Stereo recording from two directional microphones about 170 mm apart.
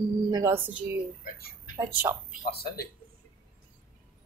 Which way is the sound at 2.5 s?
65° left (ahead or behind).